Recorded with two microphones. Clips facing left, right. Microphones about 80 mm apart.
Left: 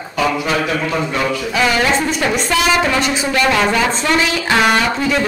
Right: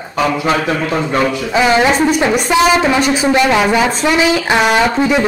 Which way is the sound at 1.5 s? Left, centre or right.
Right.